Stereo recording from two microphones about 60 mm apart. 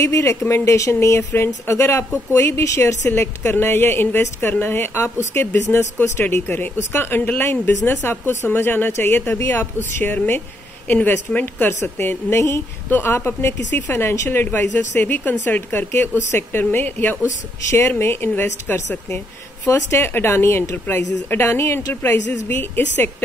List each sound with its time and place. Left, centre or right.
0.0 s speech: left
1.0 s speech: left
3.1 s a woman's voice: left
8.5 s a woman's voice: left
12.4 s speech: left
12.9 s a woman's voice: left
17.2 s a woman's voice: left
19.6 s speech: left
20.7 s a woman's voice: left
22.5 s a woman's voice: left